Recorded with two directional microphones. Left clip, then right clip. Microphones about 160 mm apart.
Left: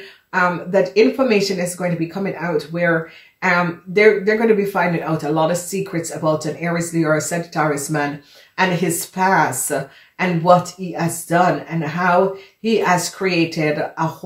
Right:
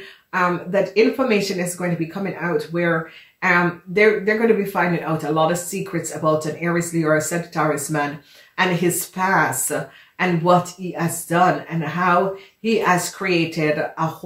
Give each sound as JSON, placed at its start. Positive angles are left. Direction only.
{"t": 0.3, "sound": "speech", "side_deg": 35}